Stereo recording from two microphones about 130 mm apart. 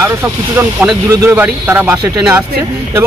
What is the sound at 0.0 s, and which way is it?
Speech, 15° right (ahead or behind).